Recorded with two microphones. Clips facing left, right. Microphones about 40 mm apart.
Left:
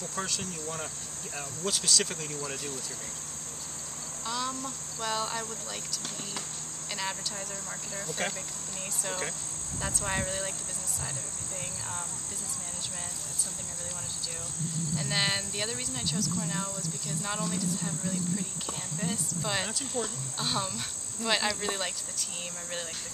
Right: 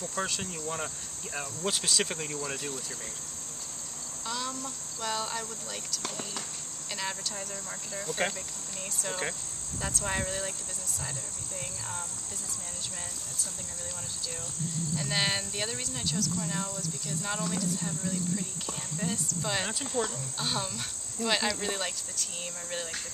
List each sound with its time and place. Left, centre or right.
0.2 s speech: centre
4.3 s speech: centre
7.0 s speech: centre
8.2 s speech: centre
10.0 s speech: centre
15.0 s speech: centre
19.0 s speech: centre